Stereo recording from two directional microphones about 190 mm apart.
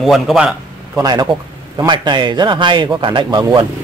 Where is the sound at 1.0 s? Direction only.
20° right (ahead or behind).